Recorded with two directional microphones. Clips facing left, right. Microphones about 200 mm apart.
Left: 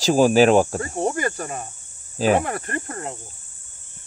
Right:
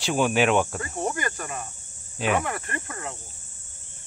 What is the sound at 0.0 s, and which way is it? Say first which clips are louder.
Speech: left 7 dB; 35° left (ahead or behind).